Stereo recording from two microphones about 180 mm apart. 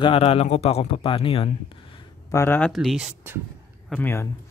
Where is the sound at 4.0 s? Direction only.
15° left (ahead or behind).